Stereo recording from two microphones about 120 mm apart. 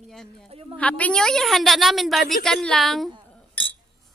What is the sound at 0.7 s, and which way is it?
A woman's voice, 10° left (ahead or behind).